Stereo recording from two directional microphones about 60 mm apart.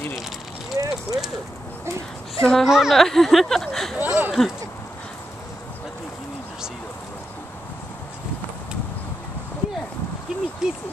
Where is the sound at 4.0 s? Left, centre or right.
Right.